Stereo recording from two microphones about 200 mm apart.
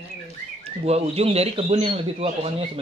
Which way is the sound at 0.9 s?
30° right (ahead or behind).